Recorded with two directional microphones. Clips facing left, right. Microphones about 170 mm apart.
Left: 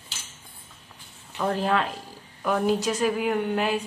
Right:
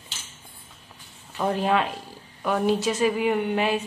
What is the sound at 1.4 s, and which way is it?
A woman's voice, 10° right (ahead or behind).